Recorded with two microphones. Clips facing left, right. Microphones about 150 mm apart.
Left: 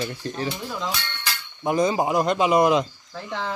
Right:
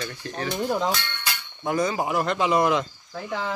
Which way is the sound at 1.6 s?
20° left (ahead or behind).